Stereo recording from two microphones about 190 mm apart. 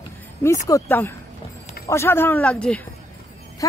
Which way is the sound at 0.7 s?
15° left (ahead or behind).